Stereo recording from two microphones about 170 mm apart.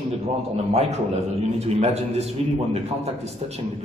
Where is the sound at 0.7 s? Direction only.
40° right (ahead or behind).